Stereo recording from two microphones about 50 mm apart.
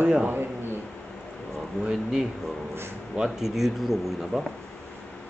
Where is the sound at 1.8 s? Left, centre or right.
Centre.